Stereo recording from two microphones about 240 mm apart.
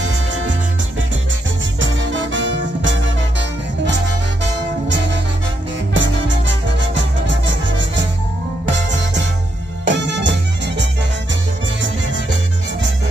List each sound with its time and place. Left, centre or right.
0.3 s music: right
1.8 s music: right